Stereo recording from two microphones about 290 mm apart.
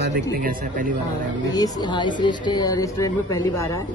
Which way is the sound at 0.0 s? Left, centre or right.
Right.